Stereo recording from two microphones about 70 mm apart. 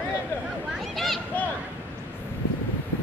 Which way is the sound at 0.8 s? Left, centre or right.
Centre.